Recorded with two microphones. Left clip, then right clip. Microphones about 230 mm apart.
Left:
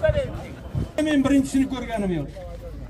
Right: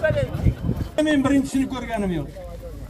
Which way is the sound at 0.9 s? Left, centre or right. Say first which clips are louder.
Right 1 dB; right.